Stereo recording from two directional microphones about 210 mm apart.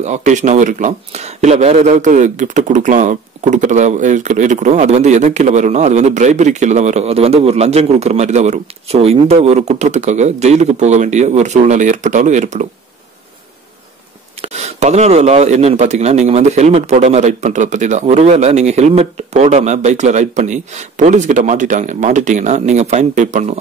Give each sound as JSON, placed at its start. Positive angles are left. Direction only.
{"t": 0.0, "sound": "speech", "side_deg": -35}
{"t": 14.4, "sound": "speech", "side_deg": -30}